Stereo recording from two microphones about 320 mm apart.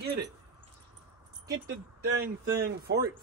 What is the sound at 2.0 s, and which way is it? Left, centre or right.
Speech, right.